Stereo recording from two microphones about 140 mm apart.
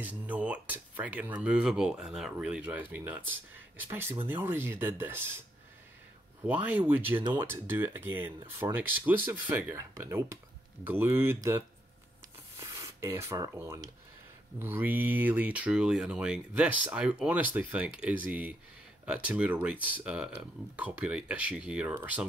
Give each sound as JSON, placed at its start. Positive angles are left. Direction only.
{"t": 0.0, "sound": "speech", "side_deg": -10}
{"t": 6.4, "sound": "speech", "side_deg": -10}
{"t": 7.2, "sound": "speech", "side_deg": -35}
{"t": 7.4, "sound": "speech", "side_deg": -15}
{"t": 12.8, "sound": "speech", "side_deg": -20}